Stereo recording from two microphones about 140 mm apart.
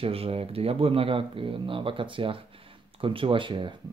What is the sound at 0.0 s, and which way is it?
Speech, 45° right (ahead or behind).